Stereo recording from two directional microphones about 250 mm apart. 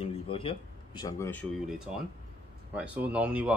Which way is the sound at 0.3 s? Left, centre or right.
Left.